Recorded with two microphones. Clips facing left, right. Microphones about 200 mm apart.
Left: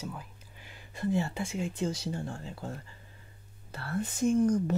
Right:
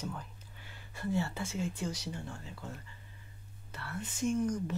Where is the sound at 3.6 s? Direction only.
35° left (ahead or behind).